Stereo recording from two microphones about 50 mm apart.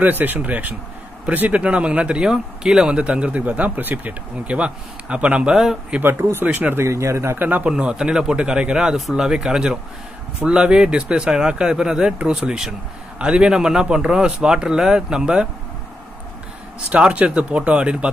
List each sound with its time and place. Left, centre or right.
0.0 s speech: right
2.3 s speech: centre
2.9 s speech: right
4.6 s speech: right
5.6 s speech: centre
6.4 s speech: right
6.9 s speech: right
7.3 s speech: right
7.7 s speech: centre
13.2 s speech: centre
16.9 s speech: right